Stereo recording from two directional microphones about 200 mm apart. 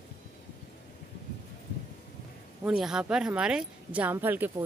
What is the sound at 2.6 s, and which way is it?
Speech, 5° right (ahead or behind).